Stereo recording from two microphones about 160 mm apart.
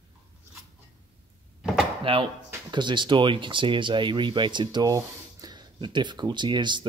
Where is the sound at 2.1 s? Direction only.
35° right (ahead or behind).